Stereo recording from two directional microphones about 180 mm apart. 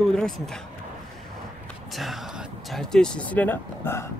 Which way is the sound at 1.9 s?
Centre (ahead or behind).